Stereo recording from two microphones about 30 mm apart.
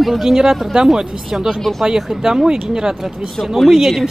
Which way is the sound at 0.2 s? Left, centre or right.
Centre.